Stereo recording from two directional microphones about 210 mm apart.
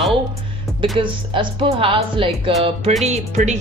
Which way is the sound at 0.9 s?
25° right (ahead or behind).